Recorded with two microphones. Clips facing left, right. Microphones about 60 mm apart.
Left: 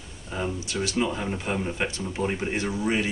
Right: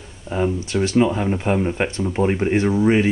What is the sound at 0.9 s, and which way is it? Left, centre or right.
Speech, right.